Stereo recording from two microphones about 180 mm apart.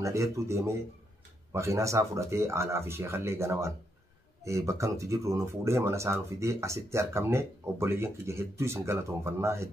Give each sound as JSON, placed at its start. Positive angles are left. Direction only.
{"t": 0.0, "sound": "speech", "side_deg": -15}